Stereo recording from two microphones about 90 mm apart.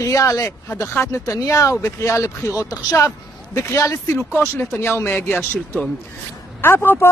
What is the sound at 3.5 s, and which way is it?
Speech, 30° left (ahead or behind).